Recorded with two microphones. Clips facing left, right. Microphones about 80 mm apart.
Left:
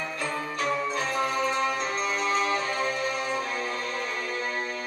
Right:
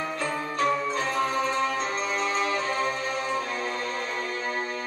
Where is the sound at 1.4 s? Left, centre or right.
Centre.